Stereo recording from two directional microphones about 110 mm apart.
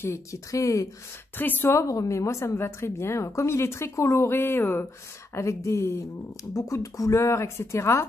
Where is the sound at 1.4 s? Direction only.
20° left (ahead or behind).